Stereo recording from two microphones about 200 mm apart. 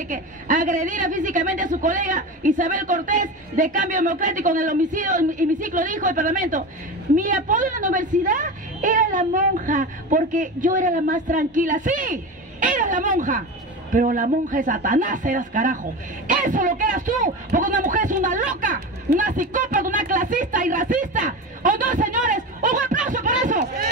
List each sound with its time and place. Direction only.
0.1 s a woman's voice: 40° right (ahead or behind)